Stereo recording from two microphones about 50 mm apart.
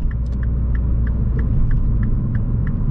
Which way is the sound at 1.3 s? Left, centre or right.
Centre.